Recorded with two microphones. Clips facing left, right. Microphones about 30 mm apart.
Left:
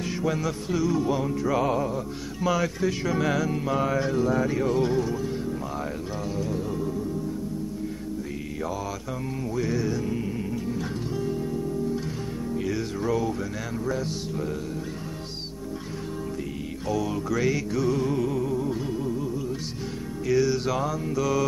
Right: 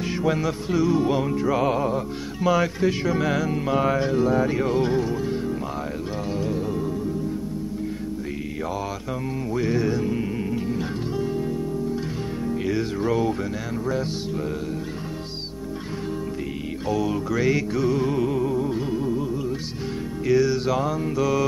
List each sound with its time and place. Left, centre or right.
0.2 s music: right
3.1 s music: centre
9.6 s music: right
12.6 s music: right
16.8 s music: centre
20.2 s music: centre